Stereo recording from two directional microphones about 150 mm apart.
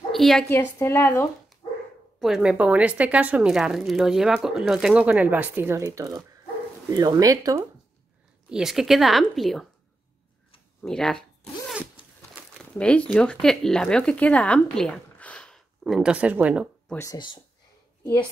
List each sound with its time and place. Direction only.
0.1 s a woman's voice: centre (ahead or behind)
0.5 s speech: 15° left (ahead or behind)
2.1 s speech: centre (ahead or behind); by 7.6 s 25° right (ahead or behind)
8.5 s a woman's voice: 5° right (ahead or behind)
10.8 s a woman's voice: 5° left (ahead or behind)
12.5 s speech: 5° left (ahead or behind)
15.8 s speech: 5° right (ahead or behind)
16.9 s speech: 15° left (ahead or behind)